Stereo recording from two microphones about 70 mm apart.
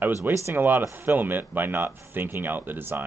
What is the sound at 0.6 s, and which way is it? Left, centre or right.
Speech, right.